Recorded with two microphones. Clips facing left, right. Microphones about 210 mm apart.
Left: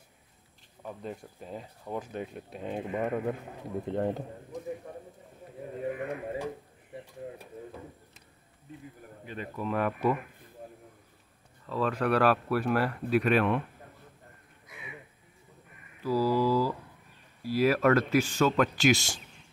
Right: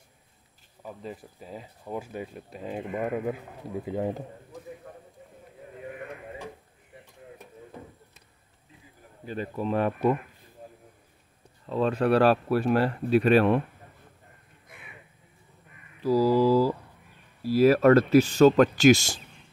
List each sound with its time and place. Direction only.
0.8 s speech: centre (ahead or behind)
9.2 s speech: 35° right (ahead or behind)
11.6 s speech: 25° right (ahead or behind)
16.0 s mantra: 40° right (ahead or behind)
16.4 s speech: 45° right (ahead or behind)